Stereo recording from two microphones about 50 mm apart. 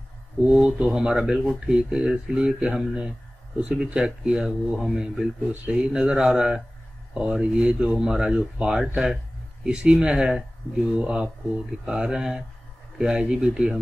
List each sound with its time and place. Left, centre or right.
0.5 s a man's voice: right